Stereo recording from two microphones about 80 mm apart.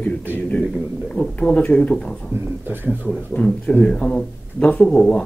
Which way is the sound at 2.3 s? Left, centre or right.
Right.